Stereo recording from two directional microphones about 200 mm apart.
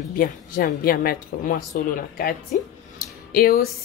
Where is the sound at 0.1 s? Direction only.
45° left (ahead or behind).